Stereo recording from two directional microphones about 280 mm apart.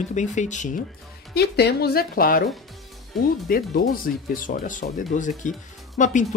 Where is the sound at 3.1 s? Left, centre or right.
Centre.